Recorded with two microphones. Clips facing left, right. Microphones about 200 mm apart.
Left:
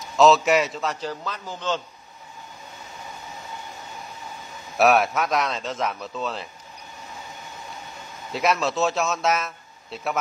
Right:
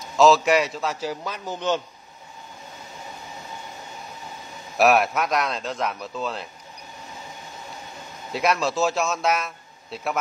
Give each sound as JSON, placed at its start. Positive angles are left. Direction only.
{"t": 0.0, "sound": "a man's voice", "side_deg": 0}
{"t": 1.2, "sound": "speech", "side_deg": -10}
{"t": 4.7, "sound": "a man's voice", "side_deg": 0}
{"t": 8.3, "sound": "a man's voice", "side_deg": 0}